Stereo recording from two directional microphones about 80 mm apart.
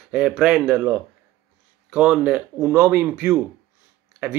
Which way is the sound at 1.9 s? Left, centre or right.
Centre.